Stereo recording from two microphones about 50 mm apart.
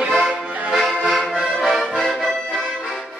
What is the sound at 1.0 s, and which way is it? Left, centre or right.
Accordion, centre.